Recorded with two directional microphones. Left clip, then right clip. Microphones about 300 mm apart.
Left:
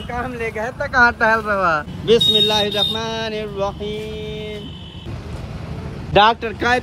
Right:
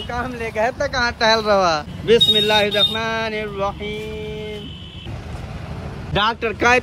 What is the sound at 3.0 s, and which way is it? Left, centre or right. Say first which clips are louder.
Speech: right 2 dB; centre.